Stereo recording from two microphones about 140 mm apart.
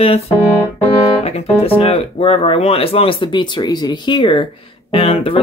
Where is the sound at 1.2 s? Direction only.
45° left (ahead or behind).